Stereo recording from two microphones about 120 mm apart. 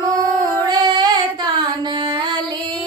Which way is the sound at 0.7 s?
35° right (ahead or behind).